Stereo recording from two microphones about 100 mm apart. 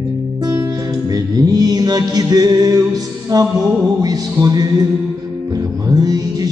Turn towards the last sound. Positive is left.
turn(degrees=-40)  # may be behind; listen again after turning